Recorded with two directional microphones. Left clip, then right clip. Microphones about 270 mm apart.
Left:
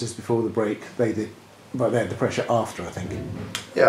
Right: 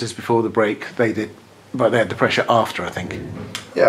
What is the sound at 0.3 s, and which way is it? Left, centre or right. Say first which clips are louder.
Speech: right 6 dB; right.